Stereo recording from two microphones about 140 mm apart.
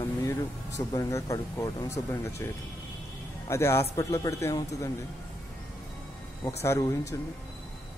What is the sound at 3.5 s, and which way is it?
Speech, 20° left (ahead or behind).